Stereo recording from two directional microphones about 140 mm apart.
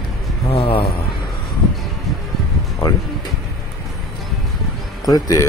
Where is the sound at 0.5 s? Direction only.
40° left (ahead or behind).